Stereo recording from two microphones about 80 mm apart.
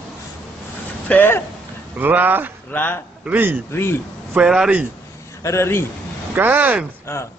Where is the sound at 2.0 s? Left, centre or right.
Right.